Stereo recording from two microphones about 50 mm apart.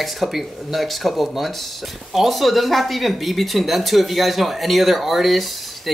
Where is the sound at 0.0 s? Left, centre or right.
Centre.